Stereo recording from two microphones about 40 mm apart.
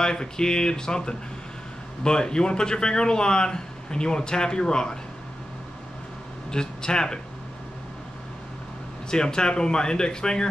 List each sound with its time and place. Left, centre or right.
0.0 s speech: centre
6.5 s speech: centre
9.1 s speech: centre